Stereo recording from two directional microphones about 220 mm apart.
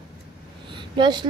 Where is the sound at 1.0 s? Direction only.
20° right (ahead or behind).